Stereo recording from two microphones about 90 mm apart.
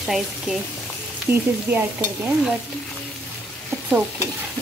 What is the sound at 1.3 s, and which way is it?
Frying, 20° right (ahead or behind).